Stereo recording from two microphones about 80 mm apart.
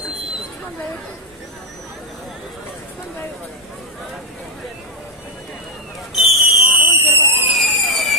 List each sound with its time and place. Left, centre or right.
6.1 s a sound: centre
6.6 s fire alarm: right
7.5 s fireworks: centre